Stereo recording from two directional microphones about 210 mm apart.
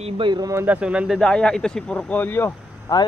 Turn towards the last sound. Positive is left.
turn(degrees=15)  # may be behind; listen again after turning